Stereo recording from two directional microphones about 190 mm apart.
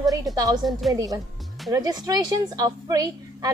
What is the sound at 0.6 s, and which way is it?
Speech, centre (ahead or behind).